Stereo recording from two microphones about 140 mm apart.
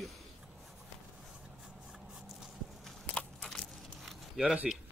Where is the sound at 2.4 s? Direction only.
5° left (ahead or behind).